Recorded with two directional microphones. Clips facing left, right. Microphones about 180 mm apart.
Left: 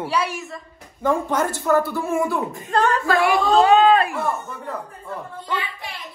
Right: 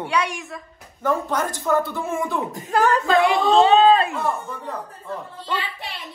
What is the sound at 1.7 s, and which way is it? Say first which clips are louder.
Speech: left 2 dB; 15° right (ahead or behind).